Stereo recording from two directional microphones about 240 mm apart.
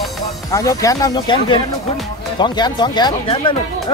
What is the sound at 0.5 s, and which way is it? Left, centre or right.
Speech, centre.